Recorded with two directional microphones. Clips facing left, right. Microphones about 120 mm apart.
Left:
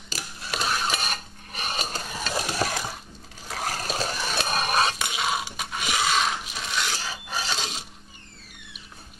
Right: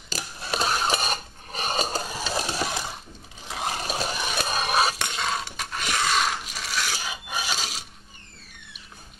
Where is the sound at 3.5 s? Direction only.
20° right (ahead or behind).